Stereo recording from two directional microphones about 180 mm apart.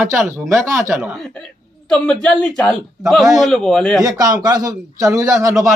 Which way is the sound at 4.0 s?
20° right (ahead or behind).